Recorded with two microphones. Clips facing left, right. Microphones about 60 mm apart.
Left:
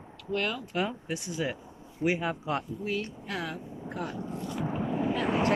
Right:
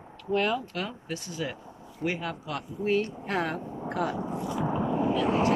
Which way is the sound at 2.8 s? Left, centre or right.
Right.